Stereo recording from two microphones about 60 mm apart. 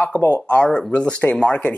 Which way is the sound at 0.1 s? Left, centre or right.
Right.